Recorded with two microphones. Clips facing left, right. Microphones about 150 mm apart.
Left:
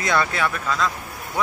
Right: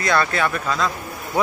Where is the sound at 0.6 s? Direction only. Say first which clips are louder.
Right 1 dB; 5° right (ahead or behind).